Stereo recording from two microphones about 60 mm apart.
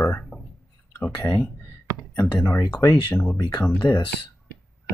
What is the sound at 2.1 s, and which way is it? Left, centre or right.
Speech, left.